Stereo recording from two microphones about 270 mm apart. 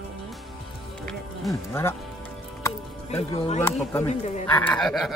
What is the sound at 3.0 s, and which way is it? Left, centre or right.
Speech, left.